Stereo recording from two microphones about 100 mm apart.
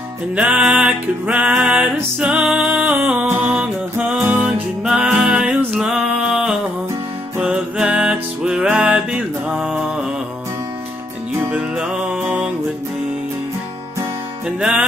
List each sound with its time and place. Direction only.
0.4 s music: 10° right (ahead or behind)
11.5 s music: 15° right (ahead or behind)
14.6 s music: 10° right (ahead or behind)